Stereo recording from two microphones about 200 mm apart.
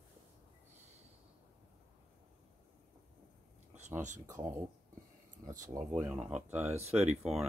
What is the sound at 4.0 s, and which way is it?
Speech, 35° right (ahead or behind).